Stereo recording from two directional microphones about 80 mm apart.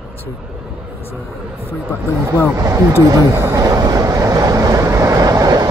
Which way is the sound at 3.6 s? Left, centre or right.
Right.